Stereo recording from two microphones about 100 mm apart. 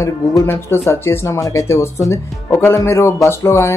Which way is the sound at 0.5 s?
25° left (ahead or behind).